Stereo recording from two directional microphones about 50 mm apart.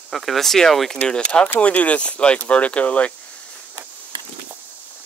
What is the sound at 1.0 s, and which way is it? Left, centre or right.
Speech, centre.